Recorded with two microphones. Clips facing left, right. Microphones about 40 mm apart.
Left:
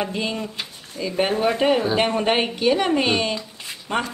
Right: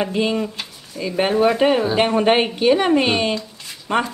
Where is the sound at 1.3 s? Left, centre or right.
Right.